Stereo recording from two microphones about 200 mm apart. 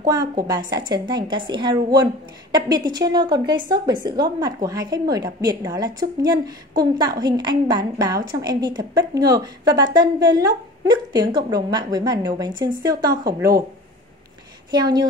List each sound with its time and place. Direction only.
0.0 s a woman's voice: 20° right (ahead or behind)
14.7 s a woman's voice: 20° right (ahead or behind)